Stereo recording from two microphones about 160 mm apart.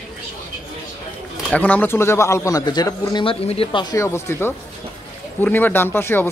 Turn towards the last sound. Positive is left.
turn(degrees=15)  # may be behind; listen again after turning